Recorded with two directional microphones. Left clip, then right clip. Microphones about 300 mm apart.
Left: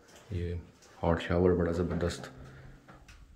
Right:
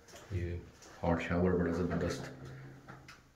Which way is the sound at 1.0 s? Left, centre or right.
Left.